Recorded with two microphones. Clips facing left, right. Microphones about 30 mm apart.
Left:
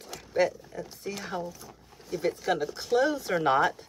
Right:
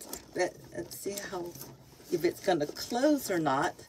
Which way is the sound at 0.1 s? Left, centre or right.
Left.